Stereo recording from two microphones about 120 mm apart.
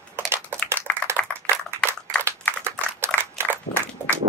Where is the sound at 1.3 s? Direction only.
15° right (ahead or behind).